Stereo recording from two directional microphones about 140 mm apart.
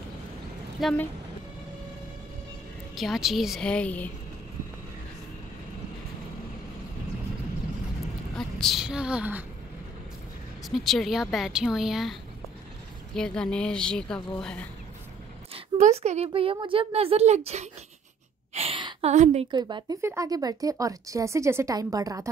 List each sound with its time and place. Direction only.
0.8 s speech: centre (ahead or behind)
3.0 s speech: centre (ahead or behind)
8.4 s a woman's voice: 5° left (ahead or behind)
10.6 s speech: centre (ahead or behind)
15.8 s a woman's voice: 50° right (ahead or behind)
18.5 s a sound: 50° right (ahead or behind)
18.8 s a sound: 35° right (ahead or behind)
19.0 s a woman's voice: 55° right (ahead or behind)
19.5 s speech: 30° right (ahead or behind)